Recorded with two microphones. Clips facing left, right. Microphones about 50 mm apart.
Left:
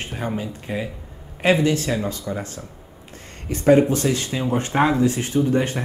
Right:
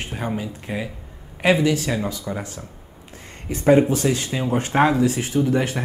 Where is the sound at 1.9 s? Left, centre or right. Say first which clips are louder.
Left 1 dB; centre.